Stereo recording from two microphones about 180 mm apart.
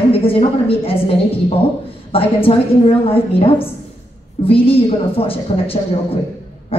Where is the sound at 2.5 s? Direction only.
30° left (ahead or behind).